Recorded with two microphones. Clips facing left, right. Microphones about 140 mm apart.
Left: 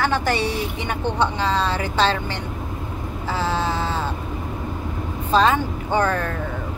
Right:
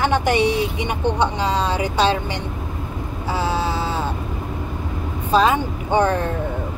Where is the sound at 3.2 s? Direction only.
10° right (ahead or behind).